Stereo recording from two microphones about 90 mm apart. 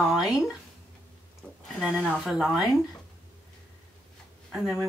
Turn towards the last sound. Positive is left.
turn(degrees=-5)  # may be behind; listen again after turning